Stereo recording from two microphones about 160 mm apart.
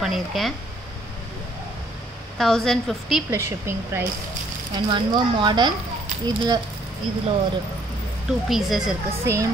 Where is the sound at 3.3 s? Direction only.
15° right (ahead or behind).